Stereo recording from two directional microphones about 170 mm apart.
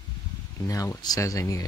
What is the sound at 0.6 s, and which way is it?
Speech, 20° left (ahead or behind).